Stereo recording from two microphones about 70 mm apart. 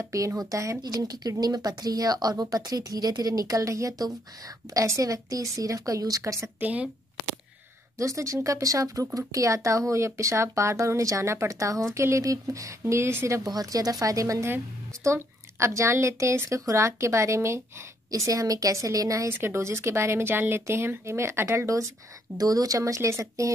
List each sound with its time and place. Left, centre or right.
0.0 s speech: right
6.6 s speech: right
8.0 s speech: right
12.8 s speech: right
13.4 s speech: right
19.2 s speech: right
21.6 s speech: right
22.4 s speech: right